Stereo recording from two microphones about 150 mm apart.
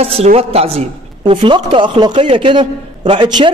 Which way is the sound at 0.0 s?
45° right (ahead or behind).